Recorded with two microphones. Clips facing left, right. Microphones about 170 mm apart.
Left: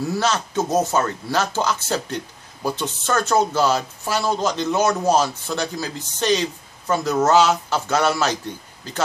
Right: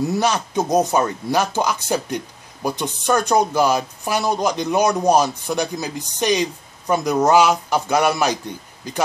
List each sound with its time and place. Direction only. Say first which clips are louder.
0.0 s speech: right 2 dB; 15° right (ahead or behind)